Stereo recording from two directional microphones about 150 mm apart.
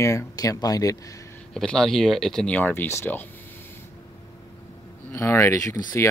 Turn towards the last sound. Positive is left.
turn(degrees=20)  # may be behind; listen again after turning